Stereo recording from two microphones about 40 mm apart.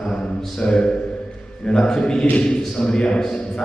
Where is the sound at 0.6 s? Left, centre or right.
Centre.